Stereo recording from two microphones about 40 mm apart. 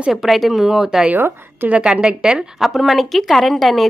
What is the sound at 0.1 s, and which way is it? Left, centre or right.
Speech, centre.